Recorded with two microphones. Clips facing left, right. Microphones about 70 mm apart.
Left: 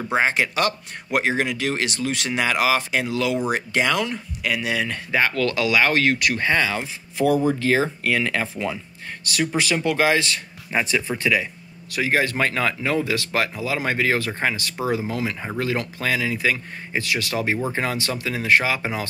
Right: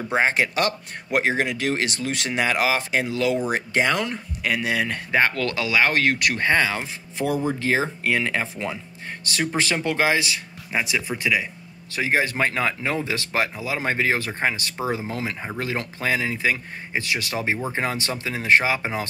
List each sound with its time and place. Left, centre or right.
0.2 s speech: right; by 11.4 s centre
11.9 s speech: right